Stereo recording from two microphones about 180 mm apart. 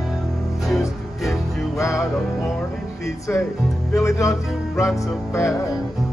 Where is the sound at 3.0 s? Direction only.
15° left (ahead or behind).